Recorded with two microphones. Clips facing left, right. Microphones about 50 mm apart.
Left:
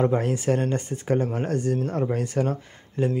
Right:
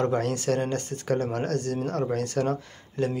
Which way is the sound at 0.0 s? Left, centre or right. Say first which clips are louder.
Left 3 dB; centre.